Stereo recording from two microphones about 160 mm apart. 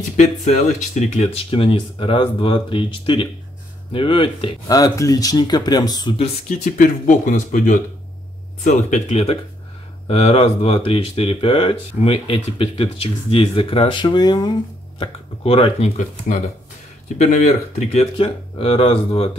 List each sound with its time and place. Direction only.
0.2 s speech: 50° left (ahead or behind); by 6.1 s 25° left (ahead or behind)
6.1 s speech: 40° left (ahead or behind)
6.8 s speech: 55° left (ahead or behind)
8.6 s speech: 45° left (ahead or behind)